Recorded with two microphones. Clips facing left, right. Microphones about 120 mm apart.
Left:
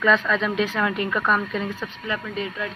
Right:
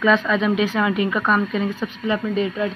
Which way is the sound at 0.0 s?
5° right (ahead or behind).